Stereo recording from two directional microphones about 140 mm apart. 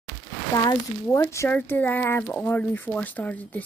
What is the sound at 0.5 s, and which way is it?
A woman's voice, 30° left (ahead or behind).